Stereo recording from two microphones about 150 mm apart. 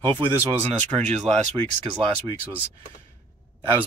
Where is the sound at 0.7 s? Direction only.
45° right (ahead or behind).